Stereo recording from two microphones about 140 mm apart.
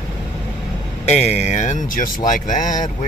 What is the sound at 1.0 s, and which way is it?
Speech, 50° left (ahead or behind).